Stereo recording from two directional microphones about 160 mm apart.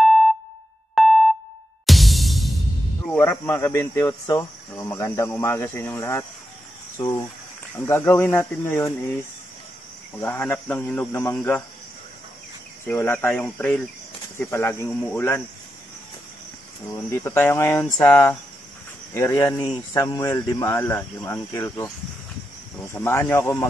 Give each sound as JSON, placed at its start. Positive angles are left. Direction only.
{"t": 0.0, "sound": "music", "side_deg": 0}
{"t": 3.1, "sound": "speech", "side_deg": 15}
{"t": 7.7, "sound": "speech", "side_deg": 15}
{"t": 10.1, "sound": "speech", "side_deg": 10}
{"t": 12.8, "sound": "speech", "side_deg": 15}
{"t": 16.9, "sound": "speech", "side_deg": 15}